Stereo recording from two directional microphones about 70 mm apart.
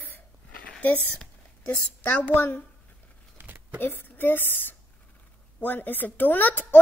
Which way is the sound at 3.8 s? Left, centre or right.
Left.